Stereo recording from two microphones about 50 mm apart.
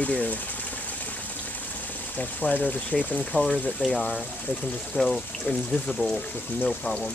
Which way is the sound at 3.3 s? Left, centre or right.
Centre.